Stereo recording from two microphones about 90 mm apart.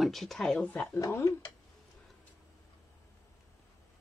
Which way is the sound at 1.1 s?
35° left (ahead or behind).